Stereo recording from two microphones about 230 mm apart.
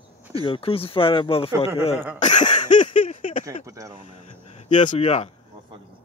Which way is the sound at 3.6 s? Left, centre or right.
Centre.